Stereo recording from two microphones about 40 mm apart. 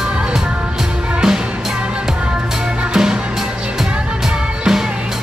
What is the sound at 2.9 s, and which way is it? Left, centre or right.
Music, centre.